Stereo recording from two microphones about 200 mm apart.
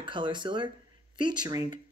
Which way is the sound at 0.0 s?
25° right (ahead or behind).